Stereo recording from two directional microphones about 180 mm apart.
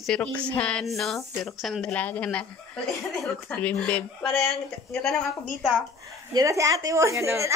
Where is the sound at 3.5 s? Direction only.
5° left (ahead or behind).